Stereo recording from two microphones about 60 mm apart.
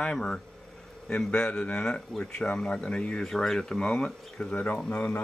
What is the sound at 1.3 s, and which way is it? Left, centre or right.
Speech, centre.